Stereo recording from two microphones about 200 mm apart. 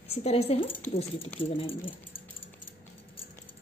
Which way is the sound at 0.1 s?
30° left (ahead or behind).